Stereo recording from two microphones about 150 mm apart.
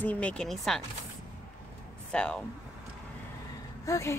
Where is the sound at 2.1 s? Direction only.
5° left (ahead or behind).